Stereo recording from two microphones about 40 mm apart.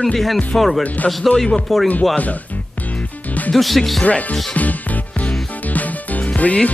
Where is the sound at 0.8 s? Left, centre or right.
Left.